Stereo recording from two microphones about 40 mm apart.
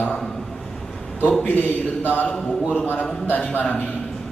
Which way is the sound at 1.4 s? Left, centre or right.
Left.